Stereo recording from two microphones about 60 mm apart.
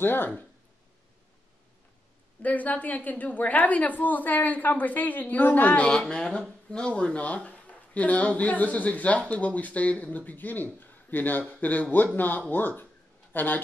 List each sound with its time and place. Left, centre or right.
0.0 s speech: left
2.4 s a woman's voice: left
5.9 s a woman's voice: centre; by 13.6 s left